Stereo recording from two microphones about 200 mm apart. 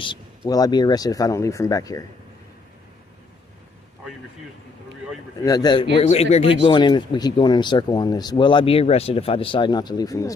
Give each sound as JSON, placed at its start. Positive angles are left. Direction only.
{"t": 0.5, "sound": "speech", "side_deg": 20}
{"t": 5.4, "sound": "speech", "side_deg": 20}
{"t": 5.9, "sound": "speech", "side_deg": 30}